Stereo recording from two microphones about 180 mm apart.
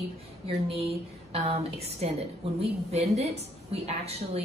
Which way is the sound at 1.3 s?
35° right (ahead or behind).